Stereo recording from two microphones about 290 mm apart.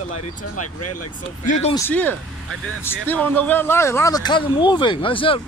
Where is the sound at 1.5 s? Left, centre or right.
Left.